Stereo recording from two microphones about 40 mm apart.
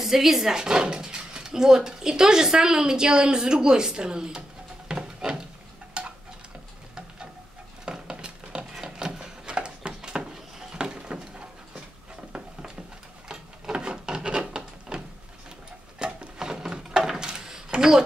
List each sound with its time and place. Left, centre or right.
0.0 s speech: centre
0.6 s speech: centre
6.0 s stir: right
7.8 s a sound: right
13.3 s wood: right
16.0 s a sound: centre